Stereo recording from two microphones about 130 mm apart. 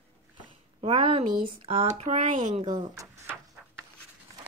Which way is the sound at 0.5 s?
45° right (ahead or behind).